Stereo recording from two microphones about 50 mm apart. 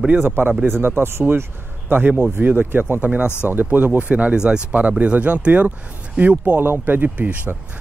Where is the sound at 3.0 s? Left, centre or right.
Right.